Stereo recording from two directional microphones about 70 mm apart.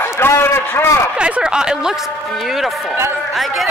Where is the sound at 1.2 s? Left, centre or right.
Centre.